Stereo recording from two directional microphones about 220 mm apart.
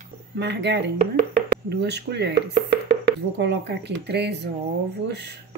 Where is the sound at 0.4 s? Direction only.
50° right (ahead or behind).